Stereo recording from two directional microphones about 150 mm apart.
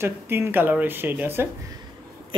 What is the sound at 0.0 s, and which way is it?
Speech, 15° right (ahead or behind).